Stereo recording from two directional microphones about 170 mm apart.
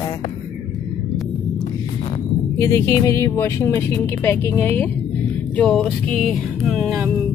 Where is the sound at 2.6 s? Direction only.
15° left (ahead or behind).